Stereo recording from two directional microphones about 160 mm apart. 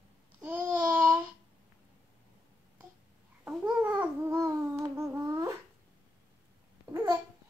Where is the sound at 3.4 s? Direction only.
10° right (ahead or behind).